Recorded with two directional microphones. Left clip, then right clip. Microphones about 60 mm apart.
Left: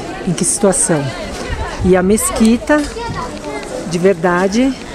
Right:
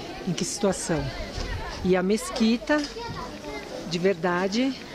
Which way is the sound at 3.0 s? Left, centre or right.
Left.